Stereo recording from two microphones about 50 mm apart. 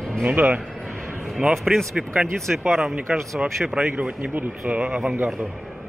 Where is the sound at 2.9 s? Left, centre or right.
Centre.